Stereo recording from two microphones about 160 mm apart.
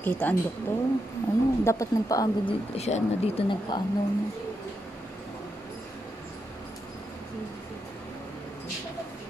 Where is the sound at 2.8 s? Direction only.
40° left (ahead or behind).